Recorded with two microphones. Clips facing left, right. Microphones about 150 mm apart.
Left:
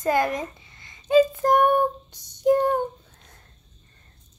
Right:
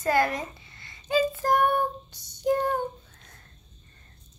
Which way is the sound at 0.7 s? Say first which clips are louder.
Left 8 dB; 20° left (ahead or behind).